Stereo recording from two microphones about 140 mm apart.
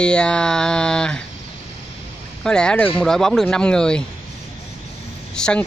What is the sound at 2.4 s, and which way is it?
Speech, 5° left (ahead or behind).